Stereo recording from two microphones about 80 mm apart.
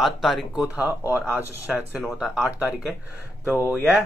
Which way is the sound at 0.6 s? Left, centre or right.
Centre.